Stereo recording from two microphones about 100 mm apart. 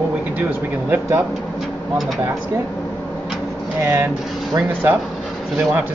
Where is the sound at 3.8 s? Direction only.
25° right (ahead or behind).